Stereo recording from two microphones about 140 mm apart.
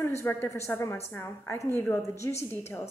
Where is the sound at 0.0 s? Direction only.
20° left (ahead or behind).